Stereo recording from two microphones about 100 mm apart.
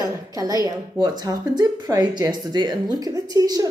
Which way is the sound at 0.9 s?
45° right (ahead or behind).